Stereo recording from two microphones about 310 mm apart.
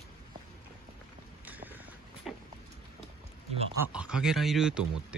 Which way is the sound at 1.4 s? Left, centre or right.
Centre.